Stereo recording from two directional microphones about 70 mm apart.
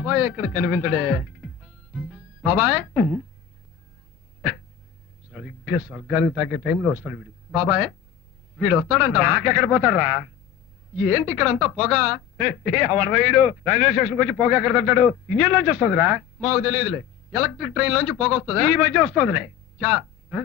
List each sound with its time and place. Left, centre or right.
0.0 s a man's voice: centre
5.3 s a man's voice: centre